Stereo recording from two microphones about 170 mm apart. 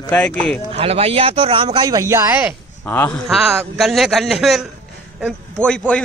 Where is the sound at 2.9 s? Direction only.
10° left (ahead or behind).